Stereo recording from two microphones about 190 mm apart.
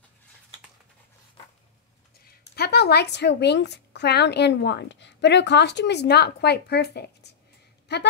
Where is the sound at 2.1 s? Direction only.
55° left (ahead or behind).